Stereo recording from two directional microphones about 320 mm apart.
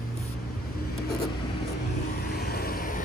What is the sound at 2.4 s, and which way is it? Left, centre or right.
Vehicle, left.